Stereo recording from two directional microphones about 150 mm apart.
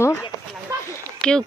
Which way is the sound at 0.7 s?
20° right (ahead or behind).